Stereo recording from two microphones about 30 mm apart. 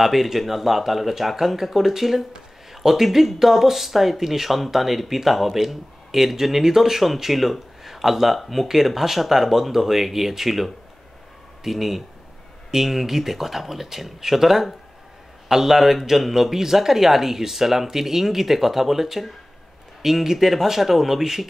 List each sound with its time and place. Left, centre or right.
0.0 s speech: centre
2.3 s a sound: centre
2.9 s a man's voice: centre